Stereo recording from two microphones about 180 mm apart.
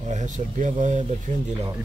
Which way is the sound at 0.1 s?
40° right (ahead or behind).